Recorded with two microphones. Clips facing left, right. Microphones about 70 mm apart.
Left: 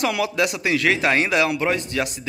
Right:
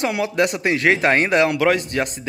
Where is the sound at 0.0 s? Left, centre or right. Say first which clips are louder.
Right 2 dB; right.